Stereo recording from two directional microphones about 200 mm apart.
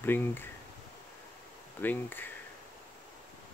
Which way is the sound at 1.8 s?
10° left (ahead or behind).